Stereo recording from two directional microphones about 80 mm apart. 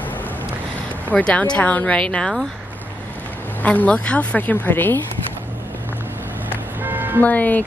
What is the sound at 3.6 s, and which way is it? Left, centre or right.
A woman's voice, centre.